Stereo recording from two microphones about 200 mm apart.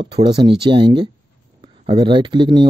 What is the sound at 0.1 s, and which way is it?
Speech, 25° right (ahead or behind).